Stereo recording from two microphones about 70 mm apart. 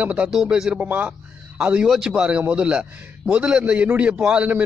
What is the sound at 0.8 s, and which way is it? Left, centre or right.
A man's voice, right.